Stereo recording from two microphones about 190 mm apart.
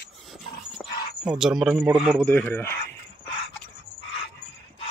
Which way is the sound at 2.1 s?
10° left (ahead or behind).